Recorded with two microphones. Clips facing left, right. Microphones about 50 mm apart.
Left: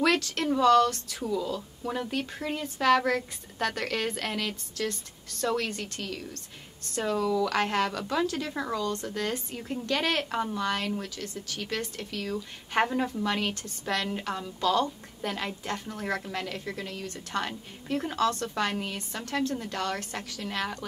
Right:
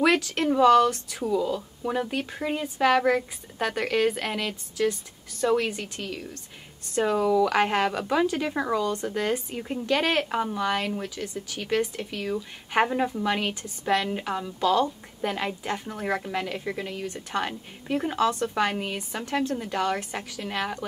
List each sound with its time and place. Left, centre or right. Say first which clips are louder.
0.0 s a woman's voice: right 3 dB; centre